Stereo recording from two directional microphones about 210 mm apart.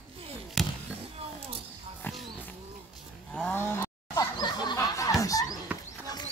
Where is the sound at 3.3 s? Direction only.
5° left (ahead or behind).